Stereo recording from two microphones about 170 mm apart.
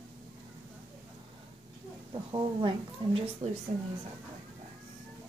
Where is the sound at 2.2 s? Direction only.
30° right (ahead or behind).